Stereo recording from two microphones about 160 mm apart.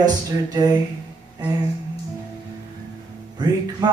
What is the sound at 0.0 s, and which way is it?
Music, 25° right (ahead or behind).